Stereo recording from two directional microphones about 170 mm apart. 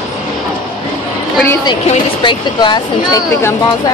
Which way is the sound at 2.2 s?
25° left (ahead or behind).